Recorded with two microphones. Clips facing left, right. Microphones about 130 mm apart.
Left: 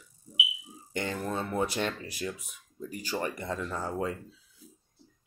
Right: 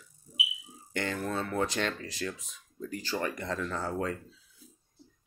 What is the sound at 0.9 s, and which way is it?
Speech, 15° left (ahead or behind).